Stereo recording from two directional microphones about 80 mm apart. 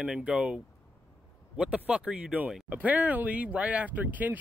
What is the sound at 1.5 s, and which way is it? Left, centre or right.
Speech, centre.